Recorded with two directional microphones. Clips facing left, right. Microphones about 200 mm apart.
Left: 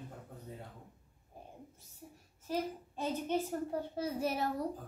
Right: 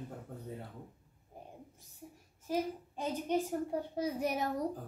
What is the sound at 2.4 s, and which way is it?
A child's voice, 15° right (ahead or behind).